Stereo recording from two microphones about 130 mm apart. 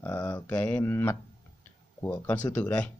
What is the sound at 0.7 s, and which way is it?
Speech, 20° left (ahead or behind).